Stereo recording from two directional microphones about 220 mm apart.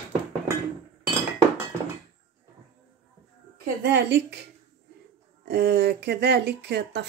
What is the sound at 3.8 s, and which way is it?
Speech, 55° right (ahead or behind).